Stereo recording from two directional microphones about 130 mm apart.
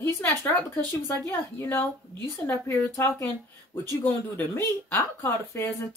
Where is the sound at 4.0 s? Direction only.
15° left (ahead or behind).